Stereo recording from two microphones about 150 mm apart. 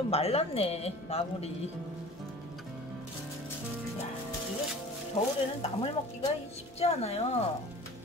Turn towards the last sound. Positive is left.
turn(degrees=45)  # may be behind; listen again after turning